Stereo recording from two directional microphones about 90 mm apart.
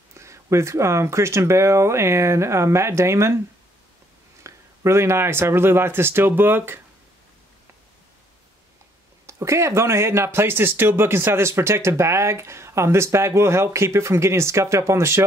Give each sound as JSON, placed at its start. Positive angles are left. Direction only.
{"t": 0.2, "sound": "speech", "side_deg": -30}
{"t": 4.4, "sound": "speech", "side_deg": -30}
{"t": 9.2, "sound": "speech", "side_deg": -35}